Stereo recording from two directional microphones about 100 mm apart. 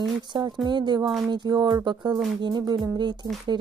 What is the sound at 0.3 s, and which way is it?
A woman's voice, 45° right (ahead or behind).